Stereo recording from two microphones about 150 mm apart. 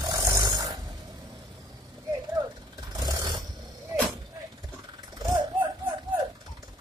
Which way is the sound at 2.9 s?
25° right (ahead or behind).